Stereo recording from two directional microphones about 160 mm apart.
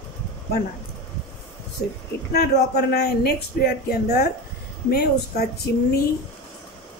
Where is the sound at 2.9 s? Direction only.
75° left (ahead or behind).